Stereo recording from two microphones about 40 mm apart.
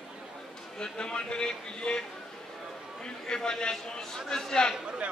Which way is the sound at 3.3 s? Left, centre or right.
Left.